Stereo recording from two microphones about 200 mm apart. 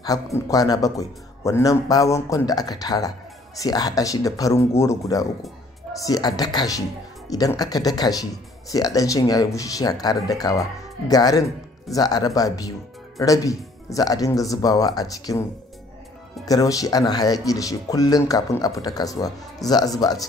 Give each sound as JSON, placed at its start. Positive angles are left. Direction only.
{"t": 0.0, "sound": "a man's voice", "side_deg": 20}
{"t": 16.4, "sound": "a man's voice", "side_deg": 15}